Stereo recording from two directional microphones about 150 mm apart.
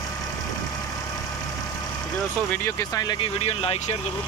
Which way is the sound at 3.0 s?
30° left (ahead or behind).